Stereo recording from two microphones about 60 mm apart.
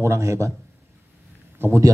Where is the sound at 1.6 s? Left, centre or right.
Right.